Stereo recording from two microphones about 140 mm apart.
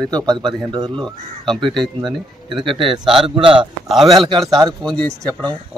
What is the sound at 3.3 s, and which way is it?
Speech, 35° right (ahead or behind).